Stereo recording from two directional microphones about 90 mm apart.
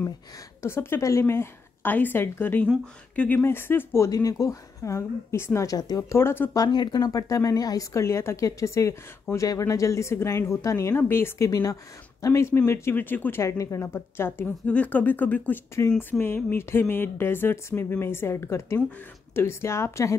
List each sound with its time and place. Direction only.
0.6 s speech: 30° left (ahead or behind)
4.1 s speech: 40° left (ahead or behind)
6.0 s speech: 25° left (ahead or behind)
6.5 s speech: 50° left (ahead or behind); by 20.2 s 30° left (ahead or behind)